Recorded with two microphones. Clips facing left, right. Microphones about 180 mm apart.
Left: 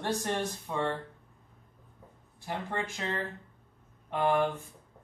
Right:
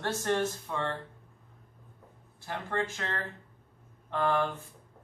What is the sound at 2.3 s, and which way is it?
Speech, 15° left (ahead or behind).